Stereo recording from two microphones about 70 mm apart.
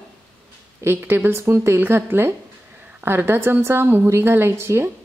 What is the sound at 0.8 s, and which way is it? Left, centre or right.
A woman's voice, right.